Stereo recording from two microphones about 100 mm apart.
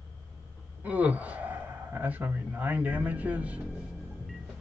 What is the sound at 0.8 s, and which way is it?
A man's voice, 15° right (ahead or behind).